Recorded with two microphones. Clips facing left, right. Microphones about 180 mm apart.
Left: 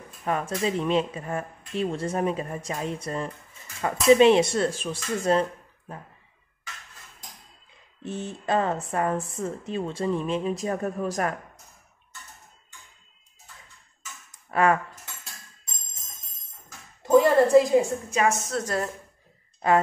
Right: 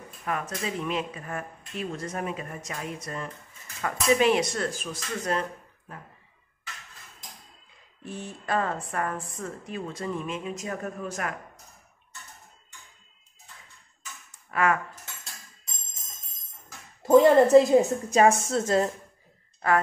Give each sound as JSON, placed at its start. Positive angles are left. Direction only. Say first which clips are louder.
{"t": 0.2, "sound": "speech", "louder": "left 5 dB", "side_deg": 30}
{"t": 8.0, "sound": "speech", "louder": "left 5 dB", "side_deg": 25}
{"t": 14.5, "sound": "cutlery", "louder": "left 3 dB", "side_deg": 30}
{"t": 17.8, "sound": "a woman's voice", "louder": "right 4 dB", "side_deg": -35}
{"t": 19.6, "sound": "speech", "louder": "left 3 dB", "side_deg": 20}